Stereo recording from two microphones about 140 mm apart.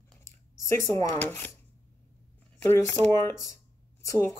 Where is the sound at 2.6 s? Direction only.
20° left (ahead or behind).